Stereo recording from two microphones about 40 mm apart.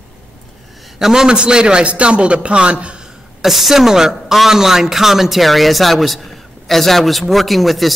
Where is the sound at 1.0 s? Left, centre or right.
Centre.